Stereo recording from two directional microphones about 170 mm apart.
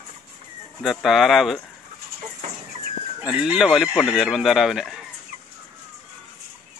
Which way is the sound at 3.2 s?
5° right (ahead or behind).